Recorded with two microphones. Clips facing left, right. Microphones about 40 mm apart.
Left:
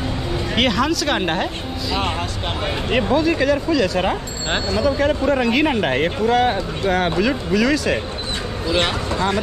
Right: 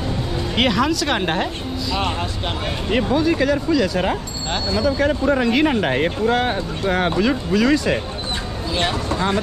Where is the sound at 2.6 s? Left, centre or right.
Centre.